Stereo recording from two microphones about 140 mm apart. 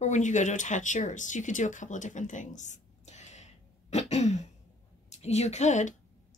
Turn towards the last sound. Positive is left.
turn(degrees=60)  # may be behind; listen again after turning